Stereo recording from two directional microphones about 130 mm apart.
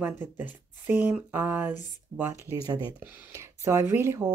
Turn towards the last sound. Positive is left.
turn(degrees=-20)  # may be behind; listen again after turning